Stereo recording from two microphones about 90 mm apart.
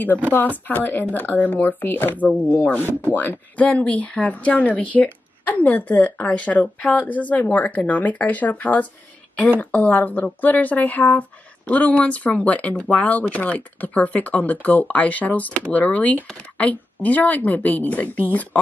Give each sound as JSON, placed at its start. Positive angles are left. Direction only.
{"t": 0.3, "sound": "speech", "side_deg": 20}